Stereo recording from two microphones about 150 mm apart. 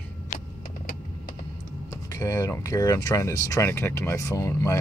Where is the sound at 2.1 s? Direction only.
20° left (ahead or behind).